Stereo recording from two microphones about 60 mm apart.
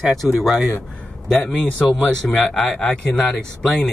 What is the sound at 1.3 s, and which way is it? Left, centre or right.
Speech, centre.